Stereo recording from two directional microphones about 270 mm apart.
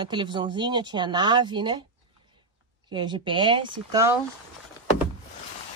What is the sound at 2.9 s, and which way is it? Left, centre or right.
Speech, centre.